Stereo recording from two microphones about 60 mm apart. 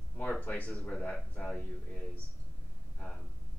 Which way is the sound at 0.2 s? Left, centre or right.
Left.